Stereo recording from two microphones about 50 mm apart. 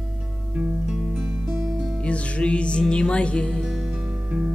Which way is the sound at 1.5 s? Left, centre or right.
Centre.